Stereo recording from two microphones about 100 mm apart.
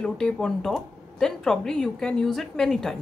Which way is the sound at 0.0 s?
5° left (ahead or behind).